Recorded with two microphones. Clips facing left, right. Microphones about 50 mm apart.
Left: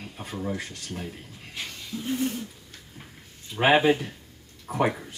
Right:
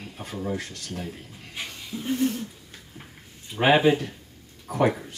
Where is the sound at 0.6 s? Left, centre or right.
Centre.